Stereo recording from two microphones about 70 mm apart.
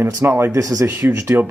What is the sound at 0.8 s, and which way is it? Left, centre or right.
Speech, right.